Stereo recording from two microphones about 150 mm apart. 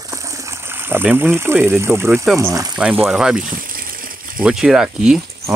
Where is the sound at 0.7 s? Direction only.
15° right (ahead or behind).